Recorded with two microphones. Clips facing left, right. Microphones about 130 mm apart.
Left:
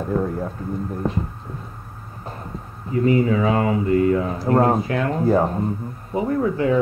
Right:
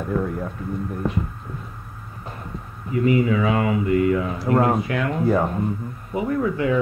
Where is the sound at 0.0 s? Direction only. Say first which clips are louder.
Left 2 dB; 35° left (ahead or behind).